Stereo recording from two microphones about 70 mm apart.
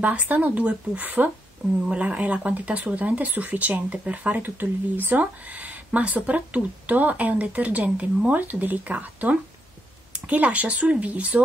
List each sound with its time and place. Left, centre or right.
0.0 s speech: right